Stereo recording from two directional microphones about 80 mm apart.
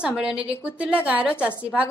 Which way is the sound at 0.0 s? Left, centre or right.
Centre.